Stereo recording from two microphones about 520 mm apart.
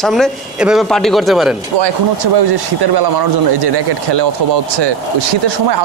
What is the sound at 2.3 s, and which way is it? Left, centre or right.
Speech, right.